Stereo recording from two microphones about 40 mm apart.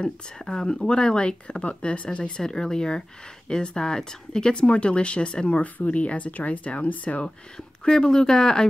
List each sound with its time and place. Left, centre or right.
0.0 s speech: centre
4.6 s speech: left
5.6 s speech: left
7.5 s speech: centre